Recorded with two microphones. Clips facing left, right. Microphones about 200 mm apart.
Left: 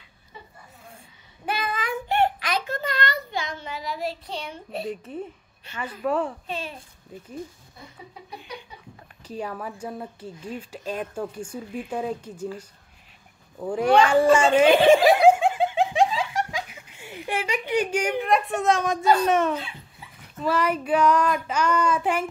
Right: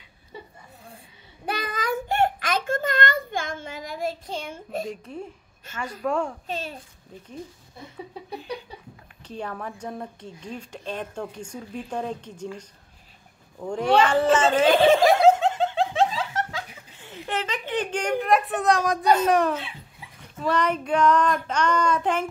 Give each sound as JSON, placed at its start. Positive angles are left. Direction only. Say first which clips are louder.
{"t": 1.4, "sound": "child singing", "louder": "even", "side_deg": -40}
{"t": 4.8, "sound": "a woman's voice", "louder": "left 2 dB", "side_deg": 5}
{"t": 6.4, "sound": "a child's voice", "louder": "right 1 dB", "side_deg": -40}
{"t": 9.2, "sound": "speech", "louder": "left 1 dB", "side_deg": 5}
{"t": 13.7, "sound": "speech", "louder": "left 2 dB", "side_deg": 5}
{"t": 14.0, "sound": "snicker", "louder": "left 2 dB", "side_deg": 10}
{"t": 16.2, "sound": "giggle", "louder": "left 2 dB", "side_deg": 15}
{"t": 18.9, "sound": "speech", "louder": "even", "side_deg": -20}
{"t": 19.2, "sound": "a woman's voice", "louder": "right 1 dB", "side_deg": 0}